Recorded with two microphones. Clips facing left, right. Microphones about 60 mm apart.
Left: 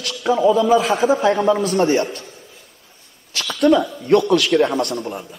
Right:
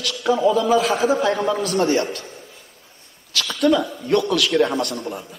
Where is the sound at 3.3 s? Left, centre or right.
Left.